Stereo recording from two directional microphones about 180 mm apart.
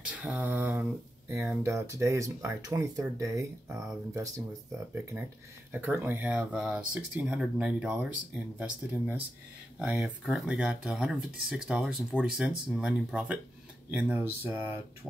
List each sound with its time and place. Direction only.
0.1 s a sound: 5° right (ahead or behind)
1.3 s speech: 15° right (ahead or behind)
5.7 s speech: 10° right (ahead or behind)